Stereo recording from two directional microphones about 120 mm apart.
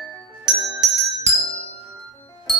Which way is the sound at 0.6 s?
5° right (ahead or behind).